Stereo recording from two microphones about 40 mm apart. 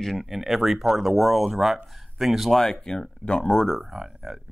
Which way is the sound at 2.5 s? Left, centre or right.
Centre.